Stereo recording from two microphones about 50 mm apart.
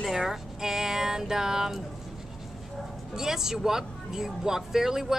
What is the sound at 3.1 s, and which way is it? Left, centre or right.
Speech, centre.